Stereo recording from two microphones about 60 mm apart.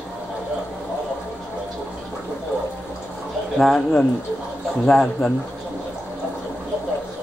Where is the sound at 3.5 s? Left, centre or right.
Centre.